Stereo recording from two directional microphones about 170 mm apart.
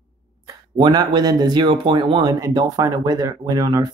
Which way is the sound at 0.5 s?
25° right (ahead or behind).